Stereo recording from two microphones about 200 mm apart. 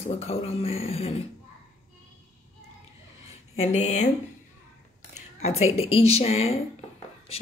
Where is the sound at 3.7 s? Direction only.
35° left (ahead or behind).